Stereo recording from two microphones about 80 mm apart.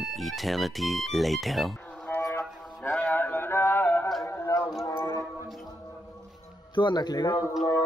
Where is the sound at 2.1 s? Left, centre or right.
Left.